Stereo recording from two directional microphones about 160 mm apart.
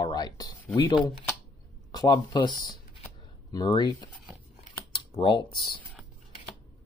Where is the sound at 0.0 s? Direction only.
25° left (ahead or behind).